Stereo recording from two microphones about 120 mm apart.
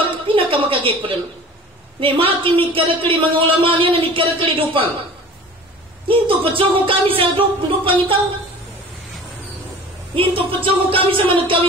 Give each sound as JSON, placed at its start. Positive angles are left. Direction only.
{"t": 0.3, "sound": "a sound", "side_deg": -50}
{"t": 2.0, "sound": "a man's voice", "side_deg": -45}
{"t": 6.0, "sound": "a man's voice", "side_deg": -45}
{"t": 10.1, "sound": "a man's voice", "side_deg": -50}